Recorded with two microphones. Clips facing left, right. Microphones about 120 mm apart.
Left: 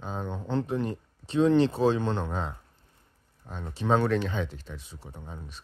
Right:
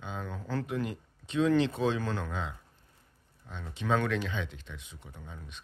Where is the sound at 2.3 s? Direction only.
40° left (ahead or behind).